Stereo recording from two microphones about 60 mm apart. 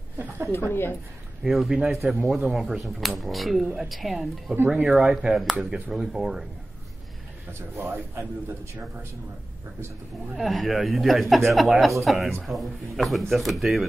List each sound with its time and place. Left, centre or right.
0.5 s a woman's voice: left
1.4 s speech: centre
4.6 s speech: centre
7.5 s a man's voice: right
10.3 s speech: centre